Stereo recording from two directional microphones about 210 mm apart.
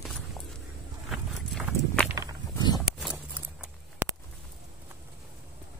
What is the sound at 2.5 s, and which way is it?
Walk, 20° left (ahead or behind).